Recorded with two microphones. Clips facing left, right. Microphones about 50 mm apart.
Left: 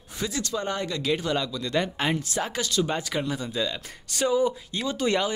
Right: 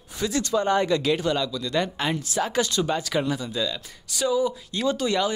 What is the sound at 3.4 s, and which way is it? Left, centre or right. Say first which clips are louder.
Speech: right 1 dB; left.